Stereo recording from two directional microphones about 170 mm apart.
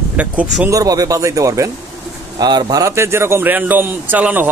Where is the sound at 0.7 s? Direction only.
20° right (ahead or behind).